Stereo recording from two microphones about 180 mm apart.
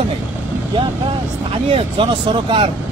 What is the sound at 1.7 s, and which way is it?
Speech, 30° right (ahead or behind).